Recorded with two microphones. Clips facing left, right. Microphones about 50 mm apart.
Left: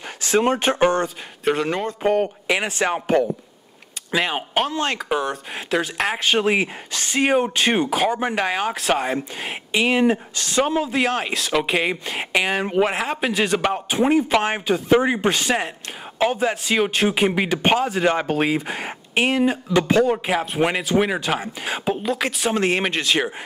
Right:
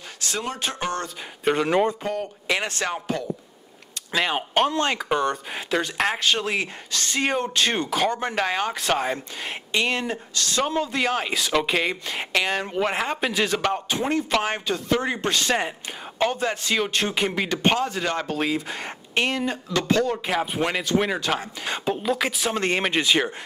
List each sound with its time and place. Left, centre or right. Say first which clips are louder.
0.4 s speech: left 11 dB; left
1.4 s speech: even; centre
2.0 s speech: left 8 dB; left
4.1 s speech: left 1 dB; centre
6.2 s speech: left 5 dB; centre
12.8 s speech: left 2 dB; centre
18.0 s speech: left 6 dB; left; by 23.3 s centre